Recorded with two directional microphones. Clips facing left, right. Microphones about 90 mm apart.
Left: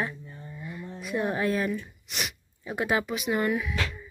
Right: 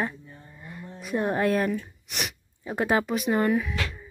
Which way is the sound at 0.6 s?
45° right (ahead or behind).